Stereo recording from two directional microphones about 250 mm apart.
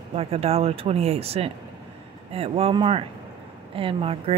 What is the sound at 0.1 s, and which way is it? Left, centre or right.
Speech, right.